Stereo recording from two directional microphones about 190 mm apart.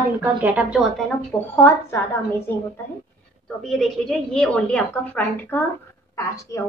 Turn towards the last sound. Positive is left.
turn(degrees=15)  # may be behind; listen again after turning